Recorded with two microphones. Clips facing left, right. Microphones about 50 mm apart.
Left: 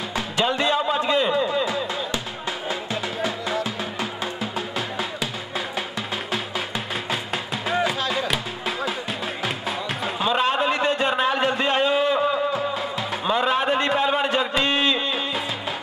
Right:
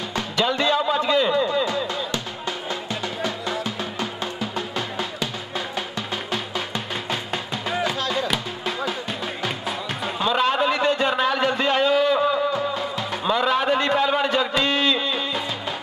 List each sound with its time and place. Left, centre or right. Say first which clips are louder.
0.1 s music: even; centre
7.8 s music: even; left
10.0 s a sound: right 1 dB; centre
11.6 s music: right 3 dB; centre